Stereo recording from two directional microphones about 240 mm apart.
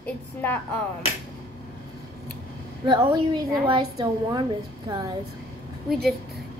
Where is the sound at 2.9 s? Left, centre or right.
Centre.